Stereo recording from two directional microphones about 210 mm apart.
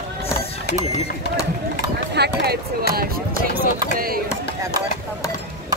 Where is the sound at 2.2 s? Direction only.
45° right (ahead or behind).